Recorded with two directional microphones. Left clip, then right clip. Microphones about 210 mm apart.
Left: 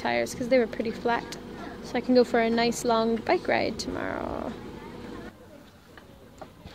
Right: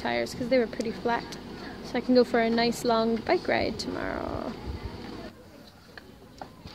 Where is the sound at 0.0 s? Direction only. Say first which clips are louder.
Left 2 dB; 5° left (ahead or behind).